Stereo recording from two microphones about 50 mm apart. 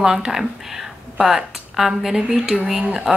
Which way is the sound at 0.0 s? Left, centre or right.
Centre.